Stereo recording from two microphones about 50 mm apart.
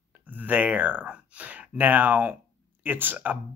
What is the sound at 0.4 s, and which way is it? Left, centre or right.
Speech, right.